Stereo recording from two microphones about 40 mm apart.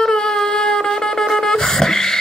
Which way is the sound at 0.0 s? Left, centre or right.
Centre.